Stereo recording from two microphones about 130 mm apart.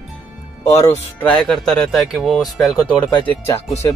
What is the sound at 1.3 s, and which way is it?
Speech, 5° left (ahead or behind).